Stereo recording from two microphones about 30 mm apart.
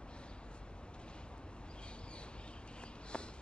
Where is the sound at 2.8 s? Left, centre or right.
Left.